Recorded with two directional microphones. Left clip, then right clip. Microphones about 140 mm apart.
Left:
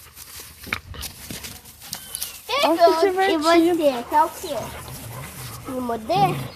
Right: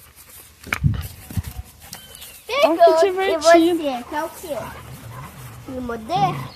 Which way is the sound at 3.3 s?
65° right (ahead or behind).